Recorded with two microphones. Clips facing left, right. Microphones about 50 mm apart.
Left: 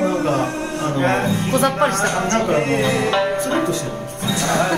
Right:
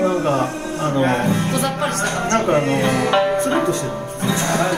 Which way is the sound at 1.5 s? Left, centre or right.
Left.